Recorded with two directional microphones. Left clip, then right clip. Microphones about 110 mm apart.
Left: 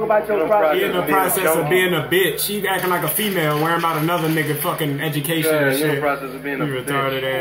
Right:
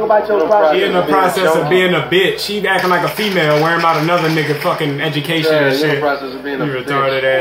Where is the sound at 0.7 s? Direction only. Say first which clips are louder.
Right 5 dB; 45° left (ahead or behind).